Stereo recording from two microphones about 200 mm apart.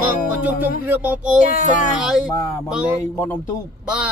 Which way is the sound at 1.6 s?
40° left (ahead or behind).